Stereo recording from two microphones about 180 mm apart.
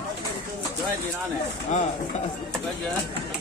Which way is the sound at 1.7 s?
40° left (ahead or behind).